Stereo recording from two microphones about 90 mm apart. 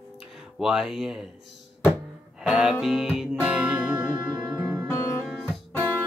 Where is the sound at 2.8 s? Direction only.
5° right (ahead or behind).